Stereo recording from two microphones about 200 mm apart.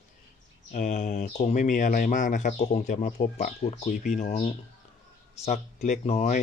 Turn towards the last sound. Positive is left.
turn(degrees=35)  # may be behind; listen again after turning